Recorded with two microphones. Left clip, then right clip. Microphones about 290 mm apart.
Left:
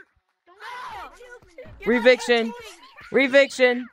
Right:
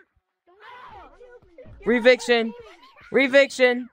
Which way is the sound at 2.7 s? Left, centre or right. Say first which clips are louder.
Left 4 dB; centre.